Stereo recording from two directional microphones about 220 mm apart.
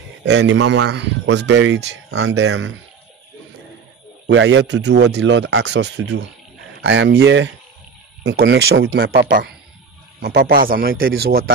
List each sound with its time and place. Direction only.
0.2 s speech: 55° right (ahead or behind)
4.3 s a man's voice: 55° right (ahead or behind)
9.2 s a man's voice: 50° right (ahead or behind)